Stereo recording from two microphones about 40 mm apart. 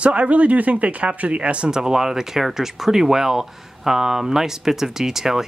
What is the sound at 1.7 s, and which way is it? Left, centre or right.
Speech, centre.